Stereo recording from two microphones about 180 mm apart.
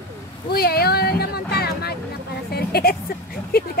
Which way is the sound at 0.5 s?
60° left (ahead or behind).